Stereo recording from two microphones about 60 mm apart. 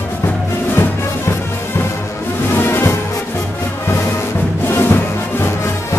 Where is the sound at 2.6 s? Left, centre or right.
Left.